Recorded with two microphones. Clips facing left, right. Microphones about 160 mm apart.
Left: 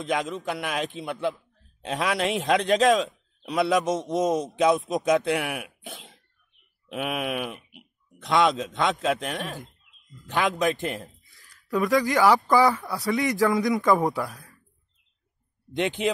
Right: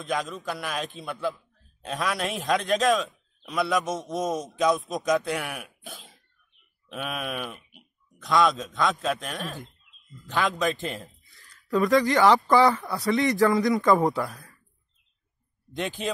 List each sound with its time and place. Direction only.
0.0 s a man's voice: 20° left (ahead or behind)
5.9 s cough: 25° left (ahead or behind)
6.9 s a man's voice: 15° left (ahead or behind)
10.9 s speech: centre (ahead or behind)
11.3 s a sound: centre (ahead or behind)
11.9 s speech: centre (ahead or behind)
13.4 s a man's voice: 20° left (ahead or behind)
13.8 s speech: centre (ahead or behind)
15.7 s a man's voice: 20° left (ahead or behind)